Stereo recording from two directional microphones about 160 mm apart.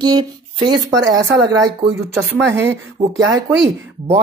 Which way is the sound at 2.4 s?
15° right (ahead or behind).